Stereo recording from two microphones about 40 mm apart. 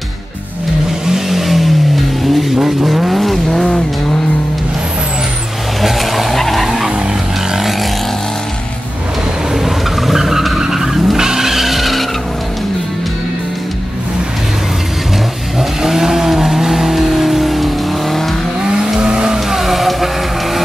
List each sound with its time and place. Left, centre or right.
1.1 s vehicle: centre
3.4 s vehicle: centre
5.8 s vehicle: centre
10.0 s vehicle: centre
15.8 s vehicle: centre
18.9 s vehicle: centre
19.5 s music: centre